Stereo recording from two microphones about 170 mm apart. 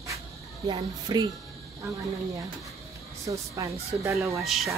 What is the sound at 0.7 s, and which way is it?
Speech, 25° right (ahead or behind).